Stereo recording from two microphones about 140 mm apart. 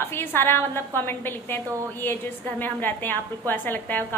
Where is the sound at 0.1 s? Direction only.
15° left (ahead or behind).